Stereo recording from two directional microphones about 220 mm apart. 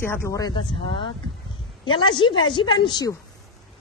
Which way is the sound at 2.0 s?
20° left (ahead or behind).